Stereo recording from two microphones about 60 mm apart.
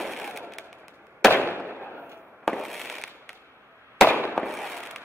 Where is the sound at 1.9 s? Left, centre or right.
Right.